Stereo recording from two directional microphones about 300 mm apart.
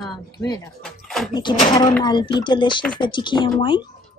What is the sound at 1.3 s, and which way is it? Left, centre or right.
Speech, centre.